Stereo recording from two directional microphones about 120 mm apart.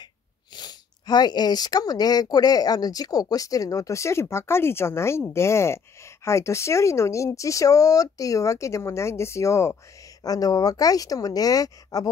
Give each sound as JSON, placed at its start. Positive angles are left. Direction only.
{"t": 0.6, "sound": "speech", "side_deg": 35}